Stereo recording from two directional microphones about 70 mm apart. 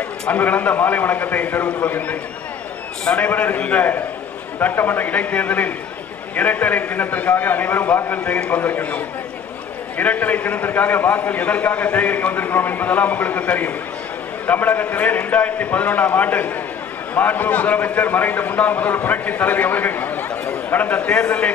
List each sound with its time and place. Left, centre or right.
0.3 s a man's voice: left
8.5 s a man's voice: left
9.9 s a man's voice: left